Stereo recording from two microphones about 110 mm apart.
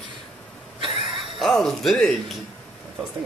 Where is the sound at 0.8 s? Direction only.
55° right (ahead or behind).